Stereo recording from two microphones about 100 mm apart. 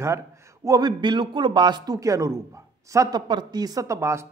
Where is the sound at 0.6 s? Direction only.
40° right (ahead or behind).